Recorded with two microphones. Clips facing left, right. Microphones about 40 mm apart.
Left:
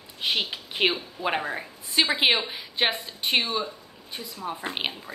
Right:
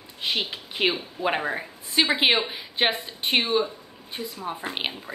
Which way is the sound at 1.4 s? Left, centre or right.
Centre.